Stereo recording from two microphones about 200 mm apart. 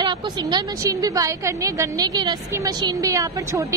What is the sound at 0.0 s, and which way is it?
A woman's voice, 20° right (ahead or behind).